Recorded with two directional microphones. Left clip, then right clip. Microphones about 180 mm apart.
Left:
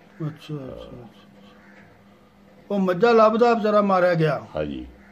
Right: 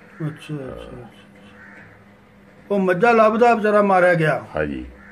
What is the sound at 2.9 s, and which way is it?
A man's voice, 15° left (ahead or behind).